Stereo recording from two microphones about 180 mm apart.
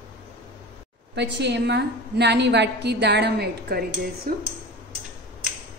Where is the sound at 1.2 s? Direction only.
75° right (ahead or behind); by 4.3 s 60° right (ahead or behind).